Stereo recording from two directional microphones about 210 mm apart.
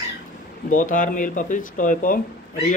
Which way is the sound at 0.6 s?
40° left (ahead or behind).